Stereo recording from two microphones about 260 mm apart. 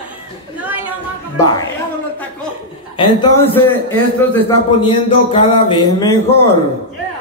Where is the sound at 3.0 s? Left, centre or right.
Centre.